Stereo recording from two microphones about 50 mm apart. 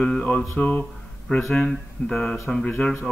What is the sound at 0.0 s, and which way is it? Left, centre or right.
Speech, centre.